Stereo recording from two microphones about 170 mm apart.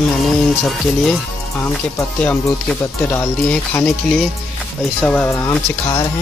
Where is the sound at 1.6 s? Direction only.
15° left (ahead or behind).